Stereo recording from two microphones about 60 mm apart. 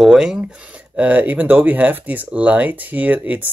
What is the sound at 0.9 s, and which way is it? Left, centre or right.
Speech, right.